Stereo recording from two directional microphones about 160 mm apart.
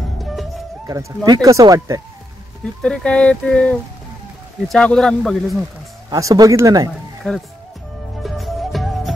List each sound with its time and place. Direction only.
0.2 s music: centre (ahead or behind)
0.8 s speech: 25° right (ahead or behind)
2.6 s speech: 5° left (ahead or behind)
6.0 s speech: 25° right (ahead or behind)
7.2 s speech: 5° left (ahead or behind)
8.2 s music: centre (ahead or behind)